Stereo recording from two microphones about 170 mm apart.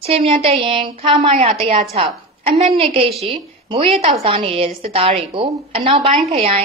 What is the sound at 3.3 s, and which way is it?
A woman's voice, 35° right (ahead or behind).